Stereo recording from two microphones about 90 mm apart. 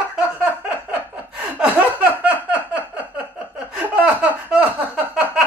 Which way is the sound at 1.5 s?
15° right (ahead or behind).